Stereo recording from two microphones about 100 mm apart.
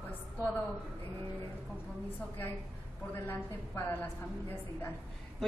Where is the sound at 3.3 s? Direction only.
20° left (ahead or behind).